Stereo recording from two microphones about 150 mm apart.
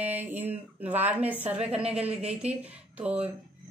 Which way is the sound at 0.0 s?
10° right (ahead or behind).